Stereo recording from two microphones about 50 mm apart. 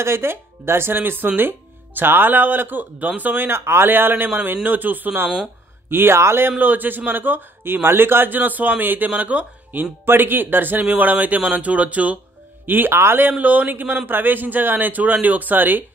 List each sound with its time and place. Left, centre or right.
0.0 s a man's voice: right
6.1 s speech: right
6.6 s a man's voice: right
9.8 s a man's voice: right
12.6 s speech: right
13.3 s a man's voice: right